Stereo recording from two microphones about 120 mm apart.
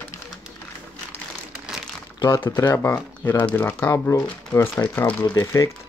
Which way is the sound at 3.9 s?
30° left (ahead or behind).